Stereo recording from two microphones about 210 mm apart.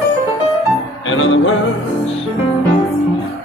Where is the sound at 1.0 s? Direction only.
65° left (ahead or behind).